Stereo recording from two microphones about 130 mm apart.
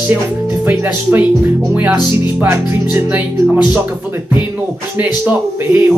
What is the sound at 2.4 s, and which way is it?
Speech, 20° right (ahead or behind).